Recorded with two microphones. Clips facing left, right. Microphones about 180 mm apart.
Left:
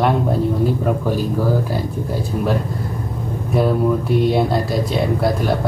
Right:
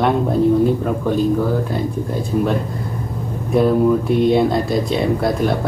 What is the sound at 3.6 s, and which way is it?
A man's voice, centre (ahead or behind).